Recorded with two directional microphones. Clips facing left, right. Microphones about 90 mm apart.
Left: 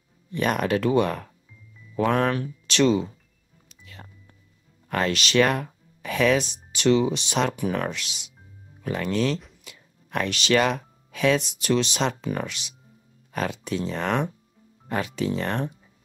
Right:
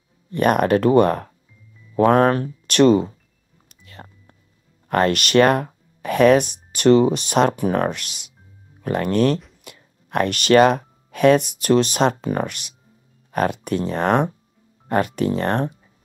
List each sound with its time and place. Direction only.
0.3 s speech: 55° right (ahead or behind)
3.6 s music: 50° right (ahead or behind)
4.8 s speech: 50° right (ahead or behind)